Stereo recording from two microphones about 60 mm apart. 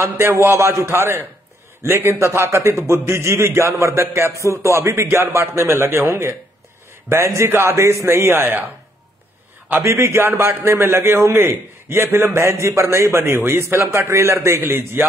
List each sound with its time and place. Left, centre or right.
0.0 s a man's voice: right
4.3 s a man's voice: right
9.8 s a man's voice: right
13.2 s a man's voice: right